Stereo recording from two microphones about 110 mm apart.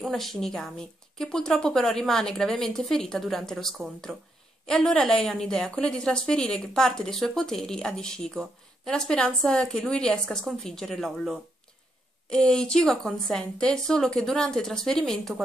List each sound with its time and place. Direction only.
0.0 s a woman's voice: centre (ahead or behind)